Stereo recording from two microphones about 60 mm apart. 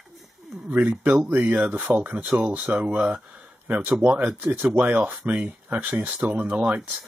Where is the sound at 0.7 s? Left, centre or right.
Right.